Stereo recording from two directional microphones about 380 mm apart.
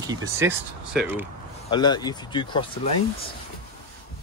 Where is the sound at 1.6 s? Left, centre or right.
Centre.